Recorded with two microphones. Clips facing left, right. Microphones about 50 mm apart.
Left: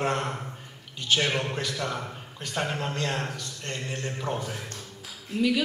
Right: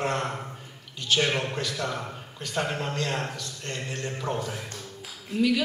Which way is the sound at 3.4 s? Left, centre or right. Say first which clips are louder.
Even; centre.